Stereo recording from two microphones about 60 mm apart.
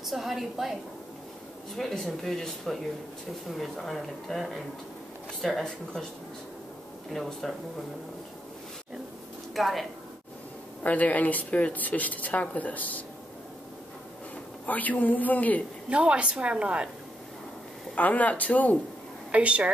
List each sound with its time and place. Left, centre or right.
0.0 s speech: centre
1.8 s speech: centre
7.1 s speech: centre
9.6 s speech: centre
10.8 s speech: left
14.7 s speech: left
15.9 s a woman's voice: centre
17.9 s speech: left
19.3 s a woman's voice: right